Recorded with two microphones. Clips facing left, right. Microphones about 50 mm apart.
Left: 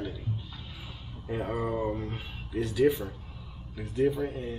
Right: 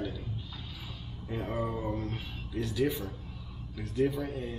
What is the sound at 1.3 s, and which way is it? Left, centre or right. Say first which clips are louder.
Speech: left 3 dB; left.